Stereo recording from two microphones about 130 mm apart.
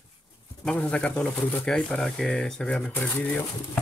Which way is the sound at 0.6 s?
5° left (ahead or behind).